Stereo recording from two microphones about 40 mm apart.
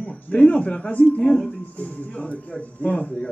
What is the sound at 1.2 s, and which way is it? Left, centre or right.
Speech, centre.